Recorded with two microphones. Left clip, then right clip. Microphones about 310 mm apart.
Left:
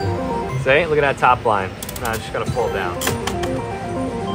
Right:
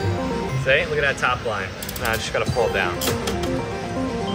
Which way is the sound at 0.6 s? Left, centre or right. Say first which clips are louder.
Left 4 dB; centre.